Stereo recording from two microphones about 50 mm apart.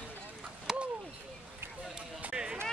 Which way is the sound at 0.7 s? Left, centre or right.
Centre.